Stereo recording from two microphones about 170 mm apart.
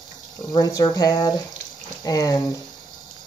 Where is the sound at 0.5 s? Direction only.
20° left (ahead or behind).